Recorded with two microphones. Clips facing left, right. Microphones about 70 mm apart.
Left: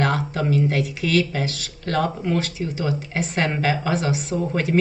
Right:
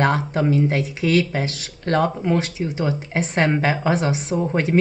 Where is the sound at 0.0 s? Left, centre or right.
Right.